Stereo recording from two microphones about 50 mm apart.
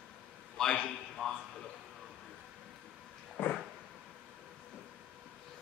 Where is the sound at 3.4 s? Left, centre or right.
Left.